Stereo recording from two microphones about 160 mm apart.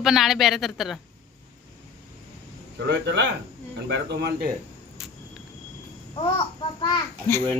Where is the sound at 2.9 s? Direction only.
90° right.